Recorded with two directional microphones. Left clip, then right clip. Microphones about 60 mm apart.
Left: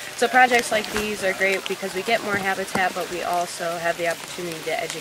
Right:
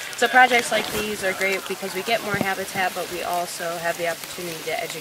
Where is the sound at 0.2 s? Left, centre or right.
Centre.